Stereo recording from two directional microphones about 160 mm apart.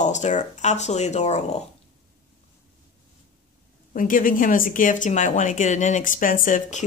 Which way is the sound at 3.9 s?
60° left (ahead or behind).